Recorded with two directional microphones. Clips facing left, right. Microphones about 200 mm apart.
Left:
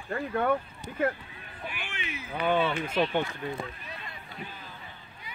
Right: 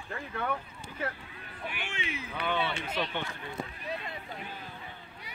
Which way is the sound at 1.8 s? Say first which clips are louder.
Right 1 dB; 25° right (ahead or behind).